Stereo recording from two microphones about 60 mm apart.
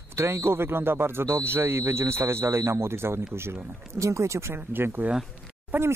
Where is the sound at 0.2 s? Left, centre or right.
Right.